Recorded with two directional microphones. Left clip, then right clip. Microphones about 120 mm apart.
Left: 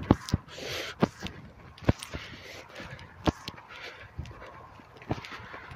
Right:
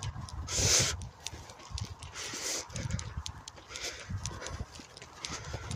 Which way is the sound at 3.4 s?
35° right (ahead or behind).